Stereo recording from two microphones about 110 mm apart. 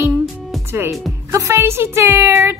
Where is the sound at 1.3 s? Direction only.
30° right (ahead or behind).